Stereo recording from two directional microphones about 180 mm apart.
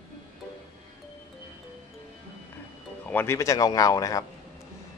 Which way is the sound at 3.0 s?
10° left (ahead or behind).